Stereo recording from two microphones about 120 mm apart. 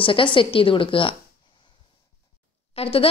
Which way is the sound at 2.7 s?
50° left (ahead or behind).